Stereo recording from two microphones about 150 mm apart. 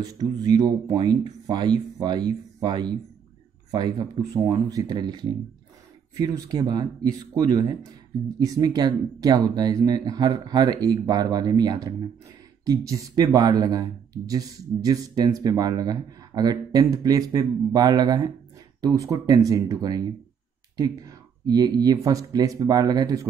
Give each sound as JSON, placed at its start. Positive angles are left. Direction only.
{"t": 0.0, "sound": "speech", "side_deg": -25}